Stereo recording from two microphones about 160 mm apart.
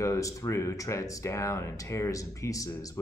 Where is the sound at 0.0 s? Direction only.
20° left (ahead or behind).